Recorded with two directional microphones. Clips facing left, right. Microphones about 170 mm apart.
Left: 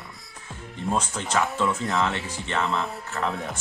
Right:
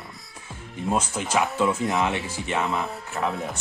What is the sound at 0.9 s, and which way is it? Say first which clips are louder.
Speech: right 2 dB; 10° right (ahead or behind).